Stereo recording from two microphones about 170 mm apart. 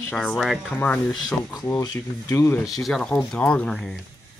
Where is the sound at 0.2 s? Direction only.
5° right (ahead or behind).